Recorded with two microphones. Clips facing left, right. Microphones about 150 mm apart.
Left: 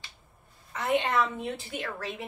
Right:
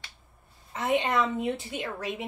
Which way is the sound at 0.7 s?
25° right (ahead or behind).